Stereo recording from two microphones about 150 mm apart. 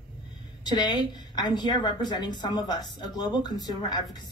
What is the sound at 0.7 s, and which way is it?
A woman's voice, 30° left (ahead or behind).